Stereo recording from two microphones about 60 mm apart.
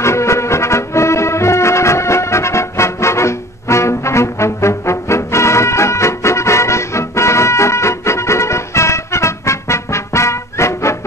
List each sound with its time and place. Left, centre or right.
0.0 s music: left